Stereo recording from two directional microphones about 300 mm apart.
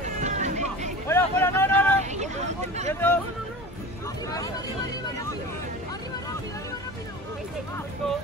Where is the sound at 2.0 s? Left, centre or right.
Right.